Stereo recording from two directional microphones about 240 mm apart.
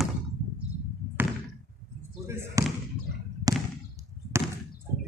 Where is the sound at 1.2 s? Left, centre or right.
Centre.